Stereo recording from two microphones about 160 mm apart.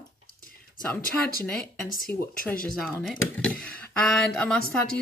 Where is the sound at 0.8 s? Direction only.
5° left (ahead or behind).